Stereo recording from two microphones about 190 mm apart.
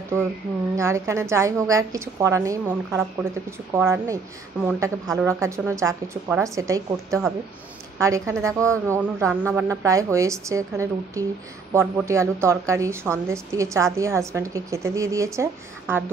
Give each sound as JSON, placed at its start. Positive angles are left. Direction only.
{"t": 0.7, "sound": "a woman's voice", "side_deg": -15}
{"t": 5.0, "sound": "speech", "side_deg": 0}
{"t": 5.3, "sound": "a woman's voice", "side_deg": -15}